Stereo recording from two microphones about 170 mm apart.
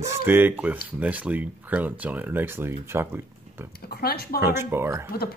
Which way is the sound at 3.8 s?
60° left (ahead or behind).